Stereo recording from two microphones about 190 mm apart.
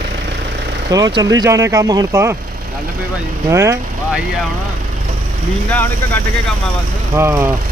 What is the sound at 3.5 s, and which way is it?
Speech, 15° right (ahead or behind).